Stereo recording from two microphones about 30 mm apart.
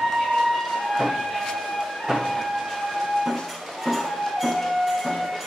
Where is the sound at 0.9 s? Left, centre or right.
Centre.